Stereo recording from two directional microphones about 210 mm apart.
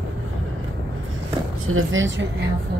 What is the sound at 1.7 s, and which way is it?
Speech, 65° right (ahead or behind).